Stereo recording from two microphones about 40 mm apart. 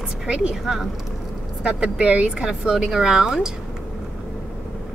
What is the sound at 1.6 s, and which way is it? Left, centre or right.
Speech, right.